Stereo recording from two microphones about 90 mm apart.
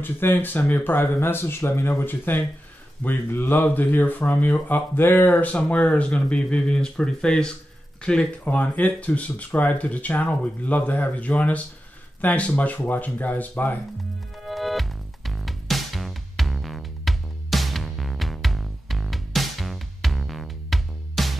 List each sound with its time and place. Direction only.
0.0 s speech: 25° left (ahead or behind)
14.4 s music: centre (ahead or behind)